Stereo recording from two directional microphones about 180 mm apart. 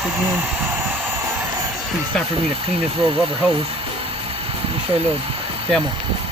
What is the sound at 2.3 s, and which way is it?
Speech, 30° right (ahead or behind).